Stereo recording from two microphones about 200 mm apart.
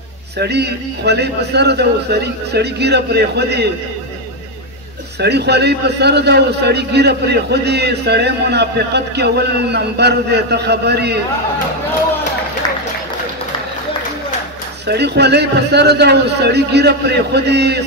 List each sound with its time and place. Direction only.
0.4 s speech: 55° right (ahead or behind)
5.2 s speech: 55° right (ahead or behind)
14.9 s speech: 55° right (ahead or behind)